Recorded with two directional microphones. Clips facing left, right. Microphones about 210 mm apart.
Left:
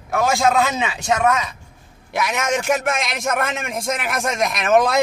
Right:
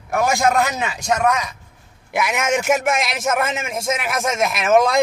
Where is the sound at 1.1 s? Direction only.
Centre (ahead or behind).